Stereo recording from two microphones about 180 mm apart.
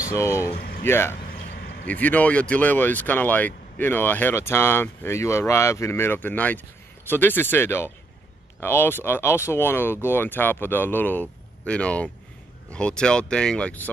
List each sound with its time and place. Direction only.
0.0 s speech: 15° left (ahead or behind)
0.6 s a sound: 55° left (ahead or behind)
0.8 s speech: 15° left (ahead or behind)